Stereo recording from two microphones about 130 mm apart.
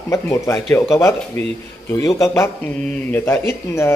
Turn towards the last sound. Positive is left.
turn(degrees=20)  # may be behind; listen again after turning